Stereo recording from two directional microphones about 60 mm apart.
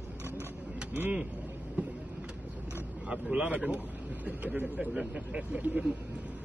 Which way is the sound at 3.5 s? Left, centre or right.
Right.